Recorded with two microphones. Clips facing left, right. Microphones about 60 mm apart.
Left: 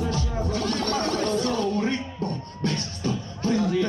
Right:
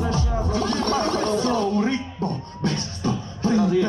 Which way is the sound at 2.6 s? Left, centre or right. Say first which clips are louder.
Right 2 dB; right.